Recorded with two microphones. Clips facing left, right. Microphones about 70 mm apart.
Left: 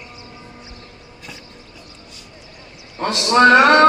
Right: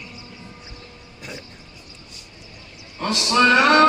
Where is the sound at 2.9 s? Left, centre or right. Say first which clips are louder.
Left 4 dB; left.